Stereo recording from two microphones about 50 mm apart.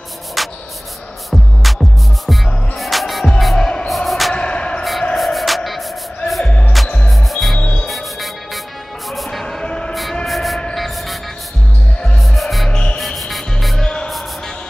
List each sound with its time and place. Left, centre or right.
0.4 s a sound: centre
1.3 s music: centre
4.3 s music: left
5.1 s music: centre
9.4 s music: centre
10.2 s train: centre
10.7 s music: centre
12.2 s music: centre
13.8 s music: centre